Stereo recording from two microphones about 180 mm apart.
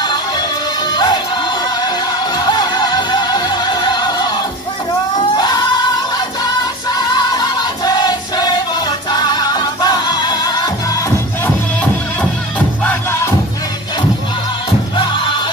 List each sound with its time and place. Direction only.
0.9 s music: 25° left (ahead or behind)
2.3 s music: 25° left (ahead or behind)
7.0 s music: 25° left (ahead or behind)
11.4 s music: 5° left (ahead or behind)
15.0 s music: 25° left (ahead or behind)